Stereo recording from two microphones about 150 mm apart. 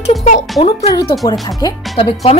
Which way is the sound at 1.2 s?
25° left (ahead or behind).